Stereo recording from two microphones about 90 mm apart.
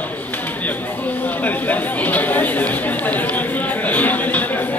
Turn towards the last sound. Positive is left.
turn(degrees=20)  # may be behind; listen again after turning